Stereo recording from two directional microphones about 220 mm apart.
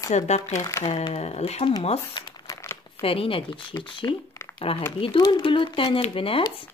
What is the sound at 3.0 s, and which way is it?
Speech, 25° left (ahead or behind).